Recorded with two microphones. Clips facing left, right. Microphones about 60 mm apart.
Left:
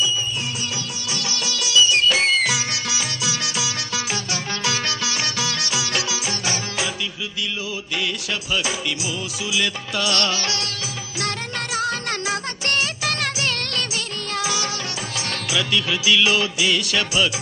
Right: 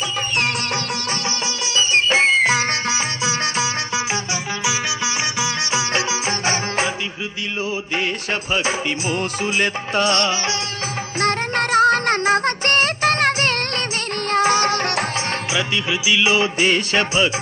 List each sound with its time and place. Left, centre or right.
0.0 s music: right
1.7 s music: right
9.1 s music: right
11.1 s music: right
15.5 s music: right
16.5 s music: right